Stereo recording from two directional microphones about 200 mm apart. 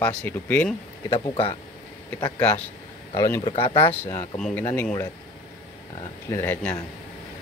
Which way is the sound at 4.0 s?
10° left (ahead or behind).